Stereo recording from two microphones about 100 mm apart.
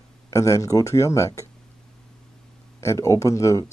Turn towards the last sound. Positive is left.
turn(degrees=30)  # may be behind; listen again after turning